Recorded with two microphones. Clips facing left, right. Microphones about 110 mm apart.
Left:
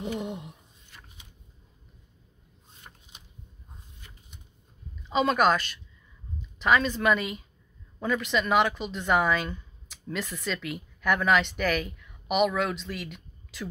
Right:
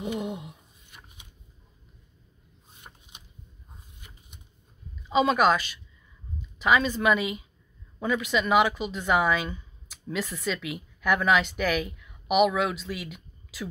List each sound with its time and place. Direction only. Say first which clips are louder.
0.0 s speech: right 1 dB; 5° right (ahead or behind)
0.9 s shuffling cards: right 1 dB; 20° right (ahead or behind)
4.0 s a sound: right 1 dB; 15° right (ahead or behind)
5.0 s speech: right 1 dB; 5° right (ahead or behind)